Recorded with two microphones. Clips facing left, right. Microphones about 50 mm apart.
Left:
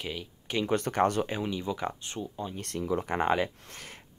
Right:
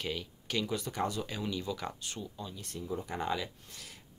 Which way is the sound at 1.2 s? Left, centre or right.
Left.